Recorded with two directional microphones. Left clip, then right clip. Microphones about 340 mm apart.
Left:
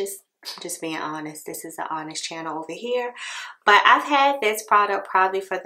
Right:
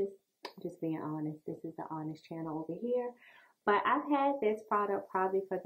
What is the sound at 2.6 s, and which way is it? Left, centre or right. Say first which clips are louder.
Speech: left 8 dB; left.